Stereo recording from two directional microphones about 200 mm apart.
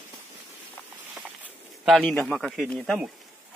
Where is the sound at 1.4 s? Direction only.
Centre (ahead or behind).